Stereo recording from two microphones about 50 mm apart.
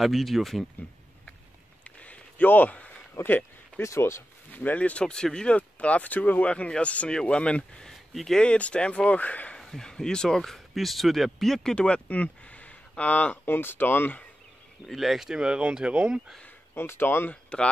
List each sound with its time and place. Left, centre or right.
0.0 s speech: centre
1.9 s a sound: left
4.5 s a sound: left
4.7 s speech: left
5.6 s speech: left
6.5 s speech: left
7.8 s speech: centre
8.4 s speech: left
9.6 s speech: centre
11.7 s speech: left
13.5 s speech: left
14.9 s speech: centre; by 16.2 s right
16.7 s speech: left
17.3 s speech: left